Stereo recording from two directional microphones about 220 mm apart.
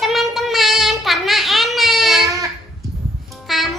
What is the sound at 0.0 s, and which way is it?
Child singing, centre (ahead or behind).